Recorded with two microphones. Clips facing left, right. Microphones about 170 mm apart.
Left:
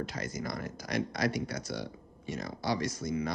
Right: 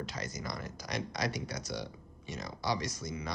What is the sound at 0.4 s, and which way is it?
Speech, 55° left (ahead or behind).